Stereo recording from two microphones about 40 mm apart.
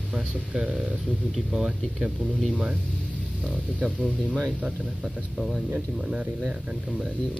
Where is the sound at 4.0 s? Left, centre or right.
Left.